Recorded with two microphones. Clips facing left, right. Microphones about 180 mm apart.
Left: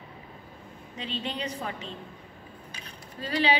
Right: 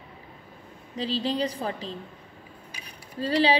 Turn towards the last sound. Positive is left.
turn(degrees=-35)  # may be behind; listen again after turning